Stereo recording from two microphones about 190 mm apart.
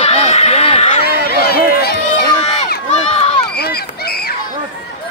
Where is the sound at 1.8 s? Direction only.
55° left (ahead or behind).